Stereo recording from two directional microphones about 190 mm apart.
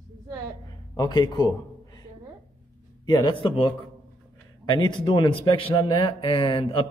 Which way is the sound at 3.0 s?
25° left (ahead or behind).